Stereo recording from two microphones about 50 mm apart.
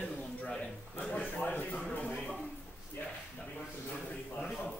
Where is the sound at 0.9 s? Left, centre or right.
Left.